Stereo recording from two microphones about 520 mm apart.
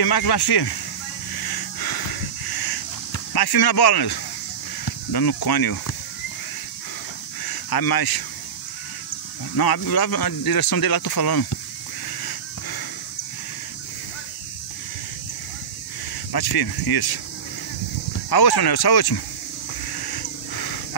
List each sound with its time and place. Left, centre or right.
0.0 s speech: left
1.3 s a sound: left
3.3 s speech: left
7.4 s speech: left
9.6 s speech: left
12.2 s a sound: left
16.5 s speech: left
18.3 s speech: left
19.9 s a sound: left